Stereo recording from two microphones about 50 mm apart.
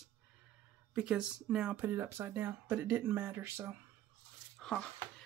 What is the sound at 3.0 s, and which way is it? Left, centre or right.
Speech, right.